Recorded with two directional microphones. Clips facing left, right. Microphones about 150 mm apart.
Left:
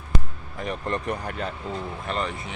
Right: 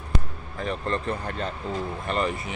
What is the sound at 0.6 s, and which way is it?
Speech, 15° left (ahead or behind).